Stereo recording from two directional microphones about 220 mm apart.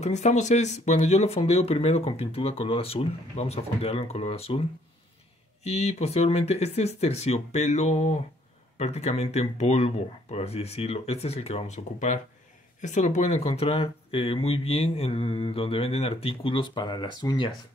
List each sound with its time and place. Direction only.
0.0 s speech: 30° left (ahead or behind)